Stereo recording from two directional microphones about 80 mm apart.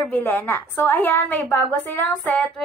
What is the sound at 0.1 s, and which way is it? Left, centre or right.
A woman's voice, left.